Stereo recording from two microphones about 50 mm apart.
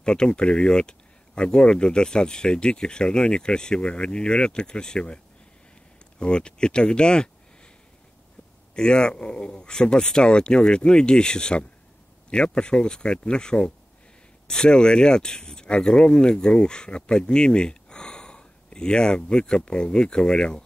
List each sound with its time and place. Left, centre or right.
0.0 s speech: centre
8.7 s speech: centre